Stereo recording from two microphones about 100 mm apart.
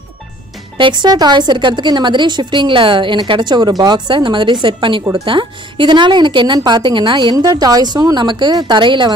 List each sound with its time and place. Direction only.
0.7 s speech: 55° right (ahead or behind)
7.3 s a woman's voice: 40° right (ahead or behind)